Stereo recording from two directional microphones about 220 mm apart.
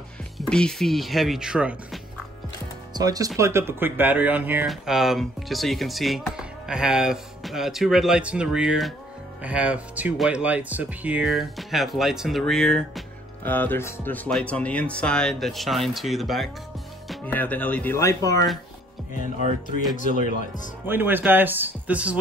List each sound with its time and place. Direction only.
0.5 s speech: 5° left (ahead or behind)
2.9 s speech: 15° right (ahead or behind); by 18.4 s 15° left (ahead or behind)
20.0 s speech: 35° left (ahead or behind)
20.8 s speech: 10° right (ahead or behind)